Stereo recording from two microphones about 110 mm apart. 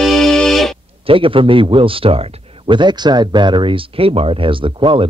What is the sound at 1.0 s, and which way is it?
A man's voice, 55° right (ahead or behind).